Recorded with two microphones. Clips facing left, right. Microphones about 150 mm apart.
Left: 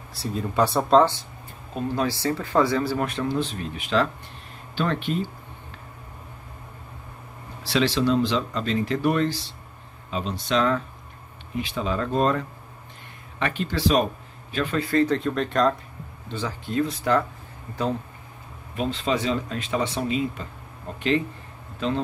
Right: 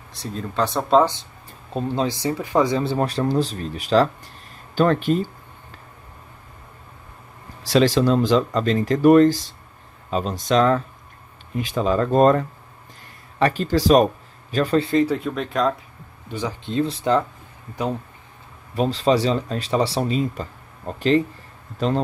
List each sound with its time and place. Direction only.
0.1 s speech: 5° left (ahead or behind)
1.7 s speech: 30° right (ahead or behind)
2.0 s speech: 15° right (ahead or behind); by 5.3 s 40° right (ahead or behind)
7.6 s speech: 45° right (ahead or behind)
15.0 s speech: 5° right (ahead or behind)
16.3 s speech: 15° right (ahead or behind)
16.7 s speech: 25° right (ahead or behind)
18.8 s speech: 35° right (ahead or behind)